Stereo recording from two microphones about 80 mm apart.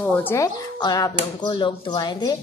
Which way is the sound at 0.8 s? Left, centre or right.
Left.